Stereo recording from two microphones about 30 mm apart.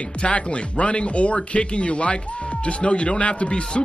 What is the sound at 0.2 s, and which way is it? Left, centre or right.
Speech, left.